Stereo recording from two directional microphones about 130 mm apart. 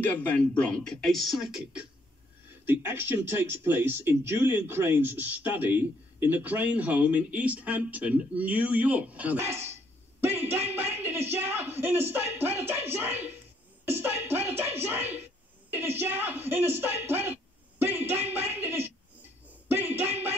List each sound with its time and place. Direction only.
0.0 s speech: 10° left (ahead or behind); by 9.6 s 15° right (ahead or behind)
10.2 s a sound: 15° right (ahead or behind)
19.7 s music: 15° right (ahead or behind)